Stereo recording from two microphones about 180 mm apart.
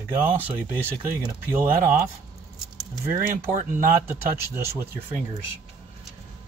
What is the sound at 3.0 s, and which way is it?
Speech, 10° right (ahead or behind).